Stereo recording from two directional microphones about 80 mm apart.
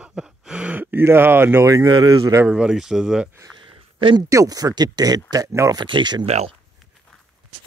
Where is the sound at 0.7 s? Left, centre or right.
Right.